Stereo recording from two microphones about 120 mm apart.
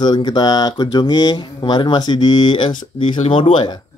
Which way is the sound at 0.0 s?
40° left (ahead or behind).